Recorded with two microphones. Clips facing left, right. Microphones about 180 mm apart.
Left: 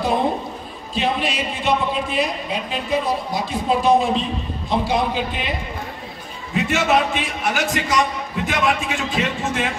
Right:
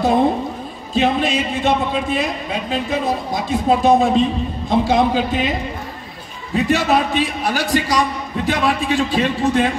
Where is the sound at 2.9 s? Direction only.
50° right (ahead or behind).